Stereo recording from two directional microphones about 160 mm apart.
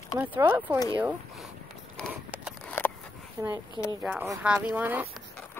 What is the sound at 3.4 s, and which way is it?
Speech, 25° right (ahead or behind).